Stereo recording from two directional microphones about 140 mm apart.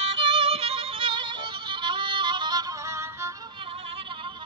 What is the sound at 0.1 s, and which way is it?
Music, 40° right (ahead or behind).